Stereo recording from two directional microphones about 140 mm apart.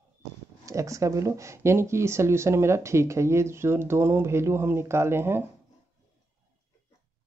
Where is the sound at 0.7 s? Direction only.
20° right (ahead or behind).